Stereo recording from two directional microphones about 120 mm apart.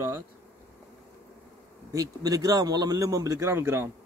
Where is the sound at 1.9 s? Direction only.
30° right (ahead or behind).